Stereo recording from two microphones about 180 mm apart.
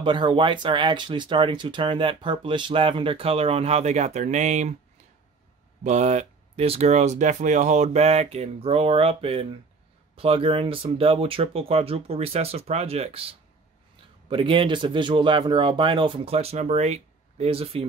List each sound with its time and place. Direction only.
0.0 s speech: 25° right (ahead or behind)
5.9 s speech: 40° right (ahead or behind)